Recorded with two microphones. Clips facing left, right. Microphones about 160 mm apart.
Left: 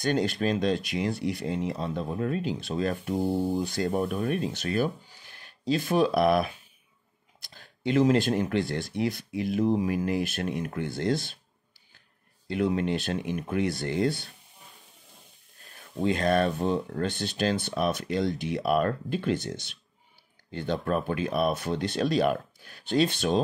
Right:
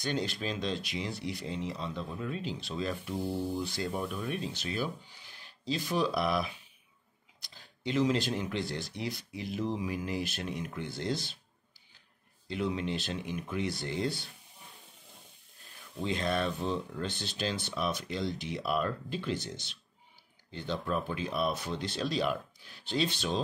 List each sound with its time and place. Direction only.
0.0 s speech: 50° left (ahead or behind)
12.4 s speech: 55° left (ahead or behind)
16.0 s speech: 55° left (ahead or behind)